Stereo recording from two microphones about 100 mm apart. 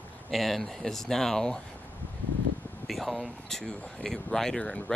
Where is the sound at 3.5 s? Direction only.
10° left (ahead or behind).